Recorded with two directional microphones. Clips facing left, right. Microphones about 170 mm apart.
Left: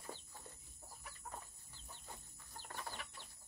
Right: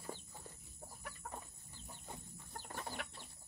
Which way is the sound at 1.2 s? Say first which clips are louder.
Right 2 dB; 70° right (ahead or behind).